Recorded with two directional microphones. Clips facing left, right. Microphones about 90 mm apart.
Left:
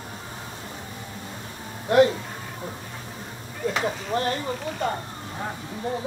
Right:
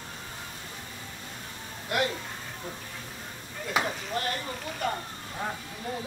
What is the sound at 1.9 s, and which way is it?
Speech, 30° left (ahead or behind).